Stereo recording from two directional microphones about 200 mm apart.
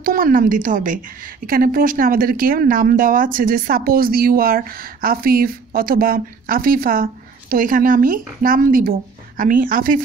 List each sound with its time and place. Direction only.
0.0 s a woman's voice: 45° right (ahead or behind)